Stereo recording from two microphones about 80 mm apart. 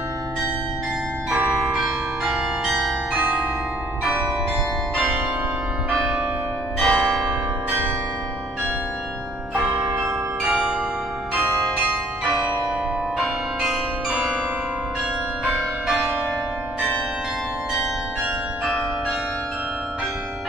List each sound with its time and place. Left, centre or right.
1.3 s change ringing: centre
4.9 s change ringing: centre
6.8 s change ringing: centre
10.4 s glockenspiel: centre
13.2 s change ringing: centre